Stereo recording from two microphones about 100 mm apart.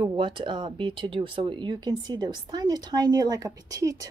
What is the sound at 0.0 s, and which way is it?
A woman's voice, 55° right (ahead or behind).